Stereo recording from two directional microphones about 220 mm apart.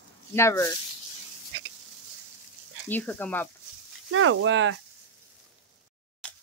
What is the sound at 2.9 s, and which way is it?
Speech, 5° left (ahead or behind).